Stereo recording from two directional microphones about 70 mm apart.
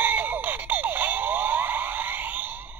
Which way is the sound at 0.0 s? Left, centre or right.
Right.